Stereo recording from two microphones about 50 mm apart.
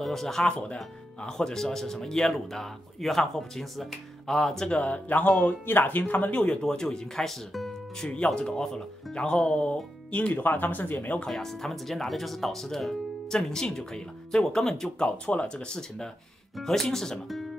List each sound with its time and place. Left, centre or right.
0.0 s speech: centre
4.6 s speech: left; by 7.7 s centre
8.0 s speech: centre
10.4 s speech: left
11.2 s speech: centre
15.0 s speech: left; by 17.5 s centre